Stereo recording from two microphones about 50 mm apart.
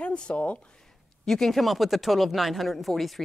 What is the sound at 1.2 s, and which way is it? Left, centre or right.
Speech, centre.